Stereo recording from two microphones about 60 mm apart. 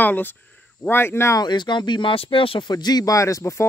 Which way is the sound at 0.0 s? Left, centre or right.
Left.